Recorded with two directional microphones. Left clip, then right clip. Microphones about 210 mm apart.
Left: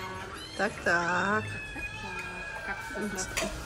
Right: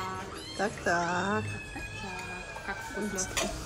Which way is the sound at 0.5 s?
10° right (ahead or behind).